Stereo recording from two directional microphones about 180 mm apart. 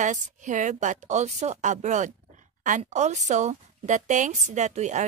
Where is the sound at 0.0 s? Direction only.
45° right (ahead or behind).